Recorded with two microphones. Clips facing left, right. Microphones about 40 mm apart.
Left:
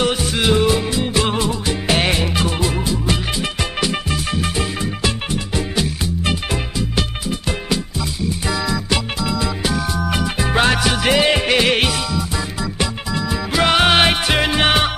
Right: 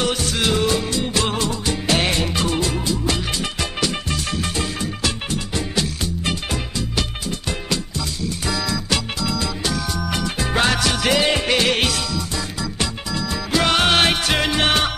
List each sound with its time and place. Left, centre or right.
0.0 s music: centre